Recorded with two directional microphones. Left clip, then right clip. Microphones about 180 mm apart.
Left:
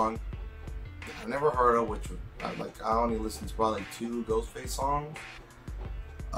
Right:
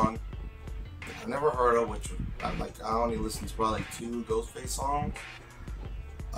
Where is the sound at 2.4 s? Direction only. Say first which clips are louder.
Right 1 dB; centre (ahead or behind).